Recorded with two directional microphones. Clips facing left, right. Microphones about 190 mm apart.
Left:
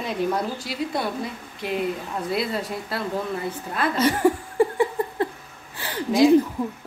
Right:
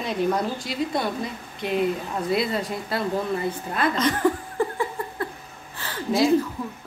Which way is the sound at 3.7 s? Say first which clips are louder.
Left 2 dB; 10° left (ahead or behind).